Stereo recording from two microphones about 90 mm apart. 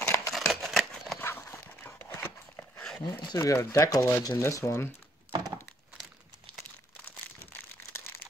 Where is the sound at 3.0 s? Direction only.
45° left (ahead or behind).